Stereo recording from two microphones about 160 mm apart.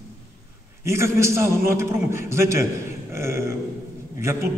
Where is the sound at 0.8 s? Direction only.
15° right (ahead or behind).